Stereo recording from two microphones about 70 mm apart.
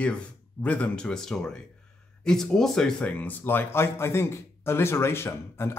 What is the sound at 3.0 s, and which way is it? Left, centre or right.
Speech, left.